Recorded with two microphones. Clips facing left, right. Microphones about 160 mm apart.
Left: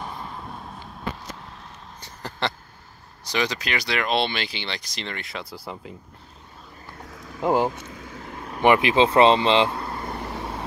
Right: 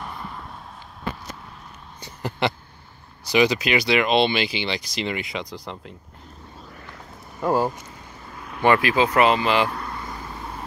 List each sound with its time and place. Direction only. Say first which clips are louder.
2.0 s a sound: right 5 dB; 10° right (ahead or behind)
3.3 s speech: right 7 dB; 10° right (ahead or behind)
5.3 s speech: right 3 dB; 5° left (ahead or behind)
7.4 s speech: even; 20° left (ahead or behind)
8.0 s vehicle: left 4 dB; 90° left
8.5 s speech: left 1 dB; 20° left (ahead or behind)
10.0 s vehicle: left 4 dB; 70° left (ahead or behind)